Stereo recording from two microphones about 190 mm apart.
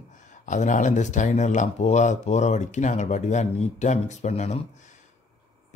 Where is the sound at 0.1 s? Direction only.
40° left (ahead or behind).